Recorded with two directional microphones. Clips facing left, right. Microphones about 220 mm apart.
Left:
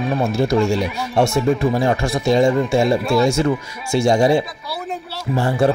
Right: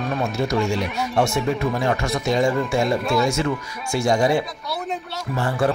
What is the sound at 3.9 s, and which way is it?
Speech, 25° left (ahead or behind).